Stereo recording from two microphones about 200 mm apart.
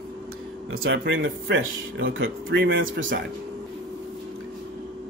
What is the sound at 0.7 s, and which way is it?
Speech, 80° right.